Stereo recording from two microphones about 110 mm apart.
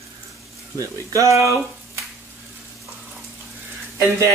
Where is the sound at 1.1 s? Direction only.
30° right (ahead or behind).